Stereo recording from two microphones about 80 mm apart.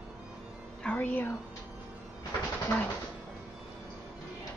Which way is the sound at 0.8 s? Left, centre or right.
Left.